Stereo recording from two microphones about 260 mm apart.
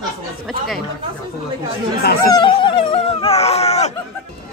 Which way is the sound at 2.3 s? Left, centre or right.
Centre.